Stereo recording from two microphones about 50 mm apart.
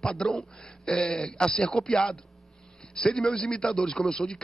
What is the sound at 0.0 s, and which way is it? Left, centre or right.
A man's voice, centre.